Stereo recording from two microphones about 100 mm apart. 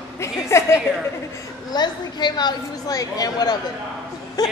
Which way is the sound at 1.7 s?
45° left (ahead or behind).